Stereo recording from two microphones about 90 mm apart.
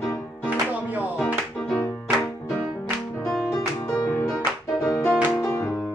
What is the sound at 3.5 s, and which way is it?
Music, 40° left (ahead or behind).